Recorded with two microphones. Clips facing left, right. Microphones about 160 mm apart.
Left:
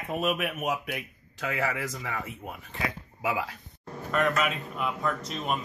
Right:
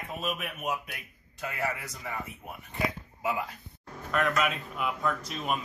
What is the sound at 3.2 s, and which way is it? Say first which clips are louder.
Speech: left 2 dB; 90° left.